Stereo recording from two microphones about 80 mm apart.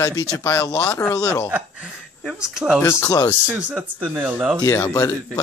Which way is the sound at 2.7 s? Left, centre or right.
Left.